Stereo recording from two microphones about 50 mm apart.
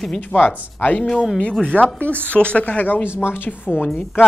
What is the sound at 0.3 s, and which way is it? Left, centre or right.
Speech, left.